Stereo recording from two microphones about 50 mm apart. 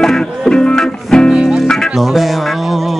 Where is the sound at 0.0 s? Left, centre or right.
Centre.